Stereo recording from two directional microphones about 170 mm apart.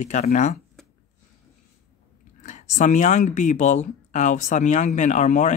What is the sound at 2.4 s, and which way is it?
Speech, 45° left (ahead or behind).